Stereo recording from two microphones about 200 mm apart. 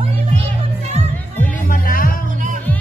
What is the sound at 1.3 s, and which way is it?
Music, 40° left (ahead or behind).